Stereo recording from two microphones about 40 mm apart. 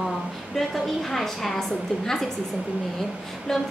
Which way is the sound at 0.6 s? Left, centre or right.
Centre.